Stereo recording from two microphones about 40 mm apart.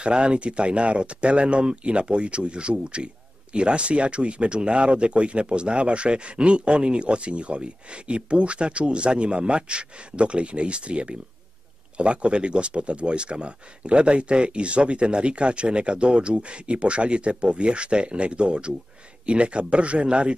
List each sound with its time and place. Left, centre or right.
0.0 s speech: right